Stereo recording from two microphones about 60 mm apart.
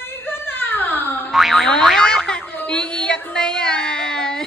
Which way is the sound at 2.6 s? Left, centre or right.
Left.